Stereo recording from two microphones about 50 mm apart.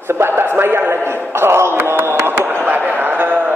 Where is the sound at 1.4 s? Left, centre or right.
Right.